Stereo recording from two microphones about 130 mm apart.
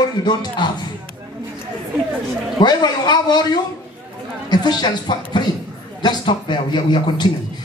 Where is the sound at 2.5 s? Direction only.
35° left (ahead or behind).